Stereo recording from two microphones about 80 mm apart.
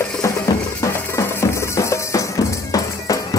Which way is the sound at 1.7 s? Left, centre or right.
Left.